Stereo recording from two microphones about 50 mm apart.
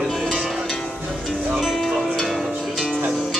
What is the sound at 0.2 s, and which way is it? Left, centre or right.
Music, centre.